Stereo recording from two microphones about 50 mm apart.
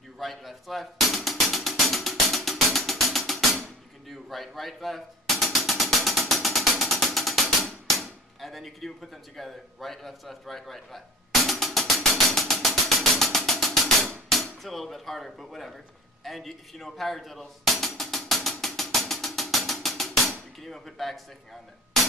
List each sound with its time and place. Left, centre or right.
0.2 s music: centre
4.1 s drum: centre
9.4 s a man's voice: centre
11.4 s music: centre